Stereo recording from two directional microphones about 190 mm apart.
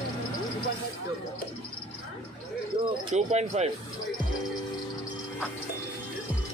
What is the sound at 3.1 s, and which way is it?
Speech, 35° right (ahead or behind).